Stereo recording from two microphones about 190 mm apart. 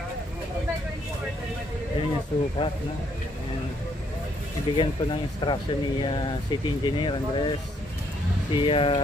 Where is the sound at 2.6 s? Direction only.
25° left (ahead or behind).